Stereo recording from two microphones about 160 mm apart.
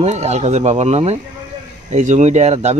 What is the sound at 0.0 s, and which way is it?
Speech, 45° right (ahead or behind).